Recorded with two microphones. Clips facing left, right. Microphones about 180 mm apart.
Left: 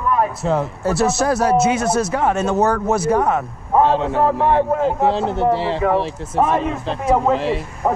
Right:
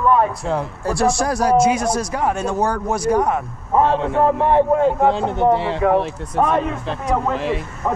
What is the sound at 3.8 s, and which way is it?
Speech, 30° left (ahead or behind).